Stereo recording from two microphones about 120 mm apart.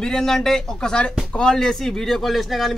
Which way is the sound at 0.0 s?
5° left (ahead or behind).